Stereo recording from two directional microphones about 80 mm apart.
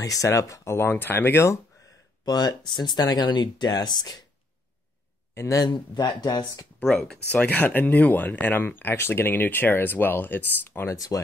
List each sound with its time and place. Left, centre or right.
0.0 s speech: left
2.2 s speech: left
5.3 s a man's voice: left
5.6 s speech: left
6.8 s speech: centre
7.2 s speech: centre
10.9 s speech: left